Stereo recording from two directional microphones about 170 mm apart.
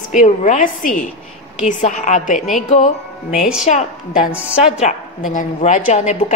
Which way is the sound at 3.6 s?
50° left (ahead or behind).